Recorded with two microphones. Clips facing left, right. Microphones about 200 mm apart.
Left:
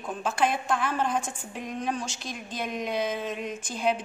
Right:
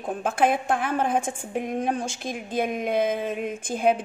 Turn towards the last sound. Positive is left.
turn(degrees=-50)  # may be behind; listen again after turning